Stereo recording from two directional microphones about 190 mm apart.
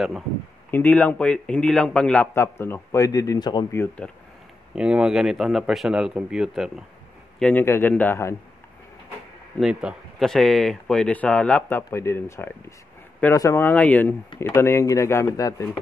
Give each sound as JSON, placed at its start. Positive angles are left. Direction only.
{"t": 0.7, "sound": "a man's voice", "side_deg": 10}
{"t": 4.7, "sound": "a man's voice", "side_deg": -5}
{"t": 9.6, "sound": "a man's voice", "side_deg": -5}